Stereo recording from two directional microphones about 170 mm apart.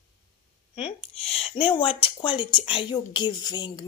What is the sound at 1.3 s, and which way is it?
Speech, 35° left (ahead or behind).